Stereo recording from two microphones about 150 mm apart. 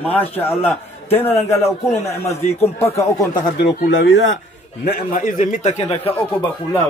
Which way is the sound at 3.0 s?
20° left (ahead or behind).